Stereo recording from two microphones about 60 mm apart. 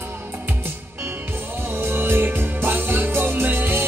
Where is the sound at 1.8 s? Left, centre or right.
Right.